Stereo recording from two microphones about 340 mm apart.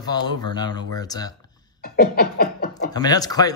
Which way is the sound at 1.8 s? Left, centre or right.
Left.